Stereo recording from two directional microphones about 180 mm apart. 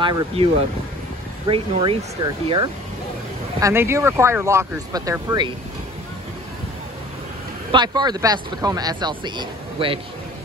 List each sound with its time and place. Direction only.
0.0 s speech: 25° right (ahead or behind)
1.5 s speech: 30° right (ahead or behind)
3.5 s speech: 15° right (ahead or behind)
7.7 s speech: 25° right (ahead or behind)